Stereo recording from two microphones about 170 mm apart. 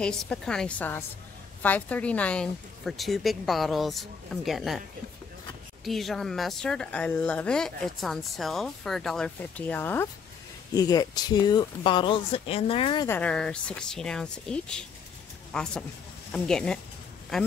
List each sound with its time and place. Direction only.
0.0 s speech: 5° left (ahead or behind)
5.9 s speech: centre (ahead or behind)
10.7 s speech: 20° left (ahead or behind)
13.1 s speech: 5° left (ahead or behind)